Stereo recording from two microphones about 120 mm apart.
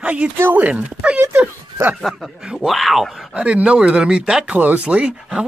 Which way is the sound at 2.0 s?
5° right (ahead or behind).